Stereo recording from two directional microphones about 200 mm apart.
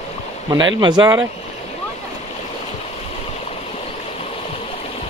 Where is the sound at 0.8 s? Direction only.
20° right (ahead or behind).